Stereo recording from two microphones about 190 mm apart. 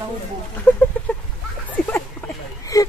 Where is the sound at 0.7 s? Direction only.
10° left (ahead or behind).